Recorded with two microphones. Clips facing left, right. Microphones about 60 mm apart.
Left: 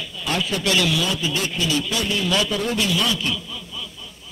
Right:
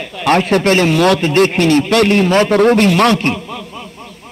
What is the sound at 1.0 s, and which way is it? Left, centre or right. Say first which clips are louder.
A man's voice: right 13 dB; right.